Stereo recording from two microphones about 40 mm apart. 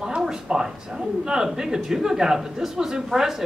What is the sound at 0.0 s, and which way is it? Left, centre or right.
Speech, centre.